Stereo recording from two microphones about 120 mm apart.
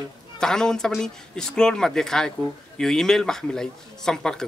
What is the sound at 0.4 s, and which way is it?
Speech, 5° left (ahead or behind).